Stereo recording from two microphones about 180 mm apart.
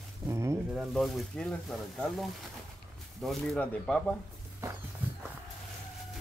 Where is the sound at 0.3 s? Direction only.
15° right (ahead or behind).